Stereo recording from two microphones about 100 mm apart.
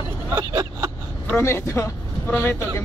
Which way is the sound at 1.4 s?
25° left (ahead or behind).